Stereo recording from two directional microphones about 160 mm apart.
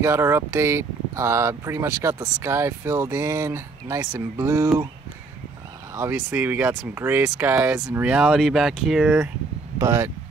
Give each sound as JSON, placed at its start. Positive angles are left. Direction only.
{"t": 0.0, "sound": "speech", "side_deg": -15}
{"t": 5.9, "sound": "speech", "side_deg": -15}
{"t": 9.8, "sound": "speech", "side_deg": -15}